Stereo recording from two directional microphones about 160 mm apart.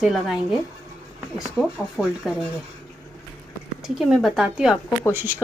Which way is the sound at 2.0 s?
5° right (ahead or behind).